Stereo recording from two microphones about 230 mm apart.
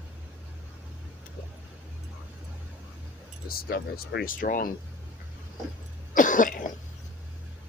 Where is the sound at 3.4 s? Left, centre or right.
Left.